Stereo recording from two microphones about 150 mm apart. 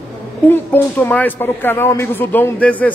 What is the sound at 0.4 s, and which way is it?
A man's voice, 15° left (ahead or behind).